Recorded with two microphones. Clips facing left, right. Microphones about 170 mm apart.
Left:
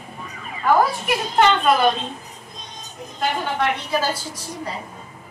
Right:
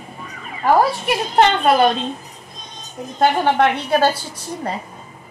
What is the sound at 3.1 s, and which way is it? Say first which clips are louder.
A woman's voice: right 8 dB; 65° right (ahead or behind).